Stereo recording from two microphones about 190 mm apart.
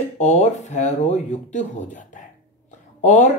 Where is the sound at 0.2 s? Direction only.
40° left (ahead or behind).